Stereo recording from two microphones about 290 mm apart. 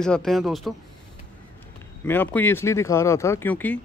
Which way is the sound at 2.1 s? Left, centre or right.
Centre.